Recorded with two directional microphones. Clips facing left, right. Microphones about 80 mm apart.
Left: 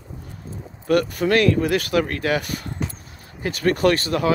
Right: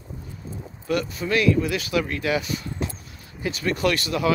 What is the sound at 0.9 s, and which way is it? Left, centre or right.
Speech, left.